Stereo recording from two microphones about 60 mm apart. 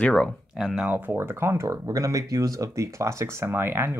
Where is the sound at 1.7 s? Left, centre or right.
Right.